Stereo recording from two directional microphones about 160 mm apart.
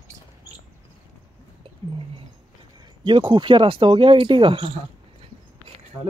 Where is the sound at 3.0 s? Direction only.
30° right (ahead or behind).